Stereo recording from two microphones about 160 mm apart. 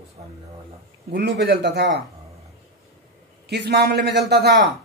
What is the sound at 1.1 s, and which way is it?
Speech, 90° right.